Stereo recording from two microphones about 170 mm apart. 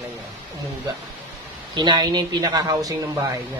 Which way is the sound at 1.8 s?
25° right (ahead or behind).